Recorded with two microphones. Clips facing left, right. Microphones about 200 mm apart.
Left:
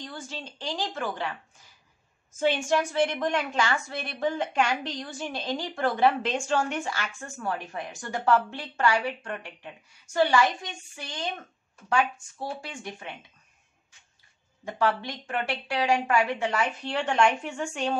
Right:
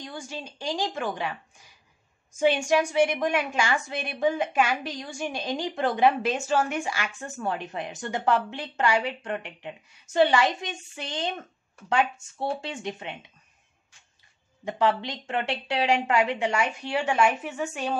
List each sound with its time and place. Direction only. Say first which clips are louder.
0.0 s a woman's voice: right 2 dB; 10° right (ahead or behind)
2.3 s a woman's voice: right 3 dB; 15° right (ahead or behind)
6.3 s a woman's voice: right 1 dB; 5° right (ahead or behind); by 13.1 s 20° right (ahead or behind)
14.6 s a woman's voice: right 2 dB; 20° right (ahead or behind)